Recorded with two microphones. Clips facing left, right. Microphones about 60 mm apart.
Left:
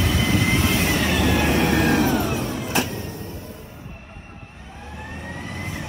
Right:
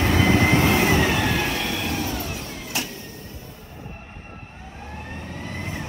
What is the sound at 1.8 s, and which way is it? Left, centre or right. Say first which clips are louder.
Vehicle: left 8 dB; left.